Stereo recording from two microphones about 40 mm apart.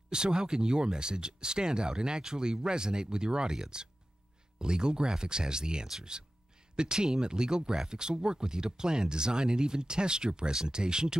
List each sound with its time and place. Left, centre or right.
0.1 s speech: centre